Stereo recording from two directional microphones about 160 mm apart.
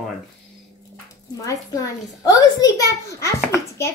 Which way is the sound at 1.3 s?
20° left (ahead or behind).